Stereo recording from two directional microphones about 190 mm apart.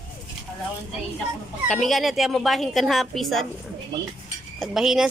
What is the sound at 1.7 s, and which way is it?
A woman's voice, centre (ahead or behind).